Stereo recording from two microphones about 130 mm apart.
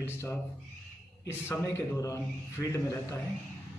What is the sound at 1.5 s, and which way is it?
A man's voice, 20° left (ahead or behind).